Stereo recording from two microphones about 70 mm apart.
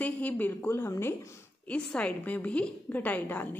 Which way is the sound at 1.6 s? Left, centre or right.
Centre.